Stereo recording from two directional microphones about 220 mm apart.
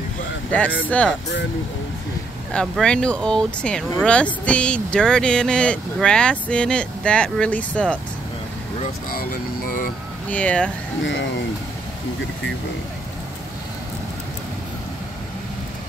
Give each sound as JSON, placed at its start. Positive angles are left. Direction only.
{"t": 0.8, "sound": "speech", "side_deg": 5}
{"t": 2.5, "sound": "speech", "side_deg": 0}
{"t": 9.7, "sound": "speech", "side_deg": 40}
{"t": 10.3, "sound": "speech", "side_deg": 5}
{"t": 11.0, "sound": "speech", "side_deg": 60}